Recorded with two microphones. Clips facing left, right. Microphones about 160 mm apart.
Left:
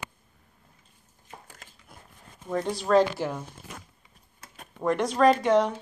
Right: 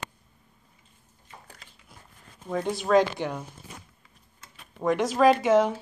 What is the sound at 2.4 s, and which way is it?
Speech, centre (ahead or behind).